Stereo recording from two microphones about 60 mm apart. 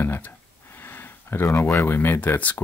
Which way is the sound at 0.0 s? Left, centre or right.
Left.